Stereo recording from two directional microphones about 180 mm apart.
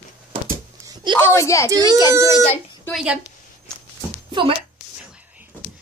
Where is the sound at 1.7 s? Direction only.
20° right (ahead or behind).